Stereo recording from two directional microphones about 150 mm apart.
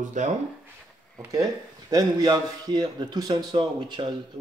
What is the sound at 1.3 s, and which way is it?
A man's voice, 25° right (ahead or behind).